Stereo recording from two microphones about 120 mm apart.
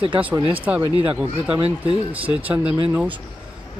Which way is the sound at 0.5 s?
10° right (ahead or behind).